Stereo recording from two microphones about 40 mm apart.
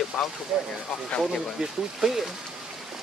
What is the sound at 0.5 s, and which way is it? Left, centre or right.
Speech, right.